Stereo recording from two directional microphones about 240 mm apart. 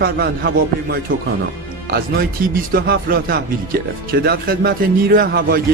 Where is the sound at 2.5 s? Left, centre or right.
Right.